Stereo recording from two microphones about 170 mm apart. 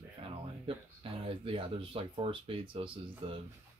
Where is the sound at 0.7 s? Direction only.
30° right (ahead or behind).